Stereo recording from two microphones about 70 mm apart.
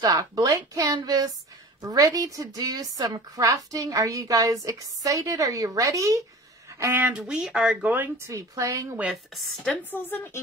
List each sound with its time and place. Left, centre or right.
0.0 s a woman's voice: right
0.9 s a sound: right
1.8 s a woman's voice: right
7.1 s speech: centre
8.3 s a woman's voice: right
9.1 s speech: centre
9.7 s a woman's voice: left